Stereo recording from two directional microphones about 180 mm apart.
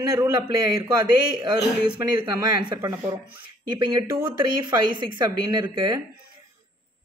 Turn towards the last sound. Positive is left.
turn(degrees=-25)  # may be behind; listen again after turning